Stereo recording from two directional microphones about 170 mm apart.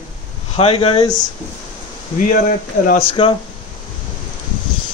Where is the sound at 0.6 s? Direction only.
35° left (ahead or behind).